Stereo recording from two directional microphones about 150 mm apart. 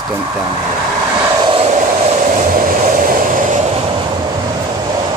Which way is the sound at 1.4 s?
40° right (ahead or behind).